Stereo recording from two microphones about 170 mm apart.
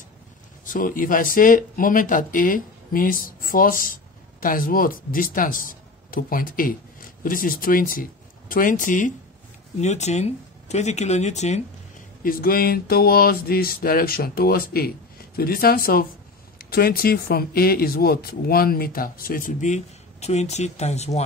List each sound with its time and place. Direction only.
0.7 s speech: 50° left (ahead or behind)
12.2 s speech: 60° left (ahead or behind); by 21.2 s 40° left (ahead or behind)